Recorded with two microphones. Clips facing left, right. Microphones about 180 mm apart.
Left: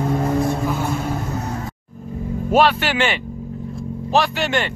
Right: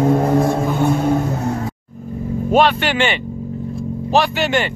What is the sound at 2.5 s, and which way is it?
Speech, 5° left (ahead or behind).